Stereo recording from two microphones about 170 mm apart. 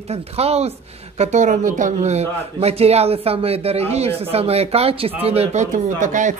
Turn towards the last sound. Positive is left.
turn(degrees=-45)  # may be behind; listen again after turning